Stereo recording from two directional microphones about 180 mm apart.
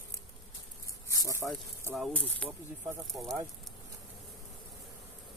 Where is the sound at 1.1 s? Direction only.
15° left (ahead or behind).